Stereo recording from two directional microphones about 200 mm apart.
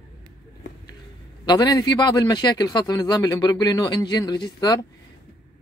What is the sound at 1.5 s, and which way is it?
A man's voice, 20° left (ahead or behind).